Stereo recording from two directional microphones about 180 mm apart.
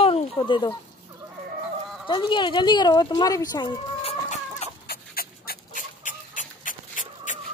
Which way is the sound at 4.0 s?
35° left (ahead or behind).